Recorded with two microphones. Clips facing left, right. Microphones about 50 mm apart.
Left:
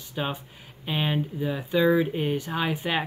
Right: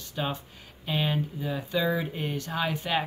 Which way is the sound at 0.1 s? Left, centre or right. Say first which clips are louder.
Left 1 dB; centre.